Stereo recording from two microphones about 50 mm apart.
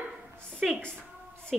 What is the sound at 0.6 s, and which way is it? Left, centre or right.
Speech, centre.